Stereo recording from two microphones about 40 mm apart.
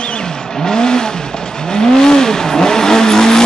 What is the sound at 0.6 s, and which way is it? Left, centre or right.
Vehicle, centre.